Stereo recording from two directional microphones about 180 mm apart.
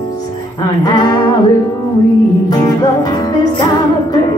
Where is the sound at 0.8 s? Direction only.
20° left (ahead or behind).